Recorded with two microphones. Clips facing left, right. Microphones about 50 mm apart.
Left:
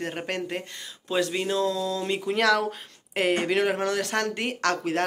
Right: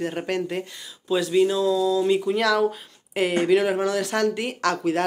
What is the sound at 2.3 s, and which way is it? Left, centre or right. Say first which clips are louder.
Speech: right 2 dB; left.